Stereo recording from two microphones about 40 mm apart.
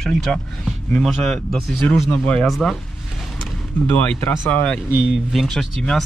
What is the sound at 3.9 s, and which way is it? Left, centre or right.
Speech, left.